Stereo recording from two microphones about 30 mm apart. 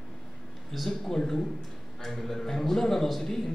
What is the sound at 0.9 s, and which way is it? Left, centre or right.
A man's voice, centre.